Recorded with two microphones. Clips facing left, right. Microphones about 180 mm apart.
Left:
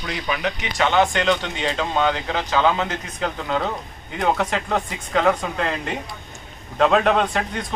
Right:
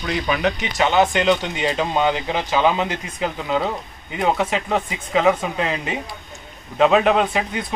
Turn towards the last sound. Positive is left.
turn(degrees=-5)  # may be behind; listen again after turning